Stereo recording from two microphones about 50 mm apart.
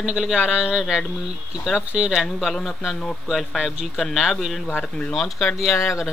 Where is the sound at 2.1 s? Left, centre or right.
Centre.